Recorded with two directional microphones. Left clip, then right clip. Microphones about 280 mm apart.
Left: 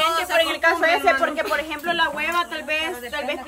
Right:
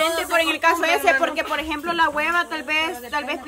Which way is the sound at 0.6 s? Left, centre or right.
Right.